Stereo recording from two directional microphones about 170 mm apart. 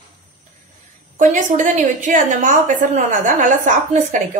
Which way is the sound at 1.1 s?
50° right (ahead or behind).